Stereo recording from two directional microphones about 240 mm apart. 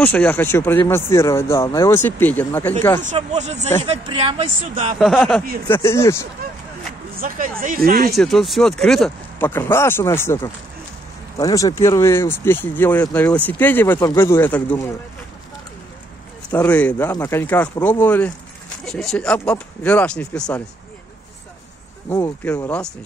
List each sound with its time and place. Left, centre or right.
0.0 s speech: centre
3.0 s speech: right
4.9 s speech: centre
7.2 s speech: right
8.2 s speech: centre
16.4 s speech: centre
22.1 s speech: centre